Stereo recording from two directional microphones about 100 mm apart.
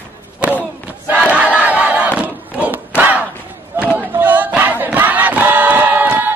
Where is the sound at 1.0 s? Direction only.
10° right (ahead or behind).